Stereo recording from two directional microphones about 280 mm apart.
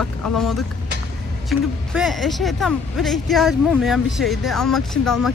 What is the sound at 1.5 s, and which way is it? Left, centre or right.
Speech, centre.